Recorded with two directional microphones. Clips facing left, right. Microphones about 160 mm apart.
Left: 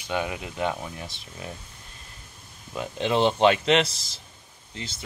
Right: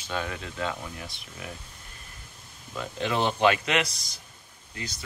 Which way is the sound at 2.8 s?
20° left (ahead or behind).